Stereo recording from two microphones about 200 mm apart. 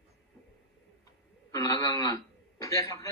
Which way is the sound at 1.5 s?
15° left (ahead or behind).